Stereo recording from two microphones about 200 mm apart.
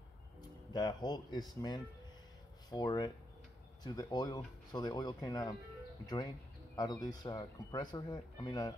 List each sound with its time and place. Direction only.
0.7 s speech: 20° left (ahead or behind)